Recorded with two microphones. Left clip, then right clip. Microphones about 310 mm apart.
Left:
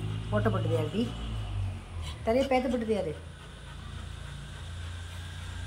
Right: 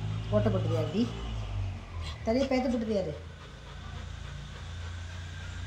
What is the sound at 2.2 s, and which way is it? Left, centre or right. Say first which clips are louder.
Speech: left 2 dB; centre.